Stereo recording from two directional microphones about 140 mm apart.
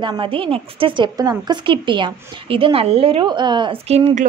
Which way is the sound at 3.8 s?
50° right (ahead or behind).